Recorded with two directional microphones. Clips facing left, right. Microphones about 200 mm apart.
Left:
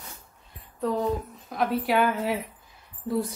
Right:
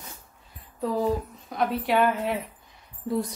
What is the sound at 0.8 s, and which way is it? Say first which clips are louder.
A woman's voice: right 1 dB; centre (ahead or behind).